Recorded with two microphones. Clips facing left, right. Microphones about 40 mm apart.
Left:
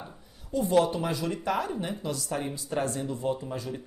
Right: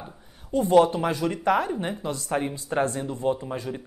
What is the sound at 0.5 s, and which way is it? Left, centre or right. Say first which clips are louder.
Speech: right 5 dB; right.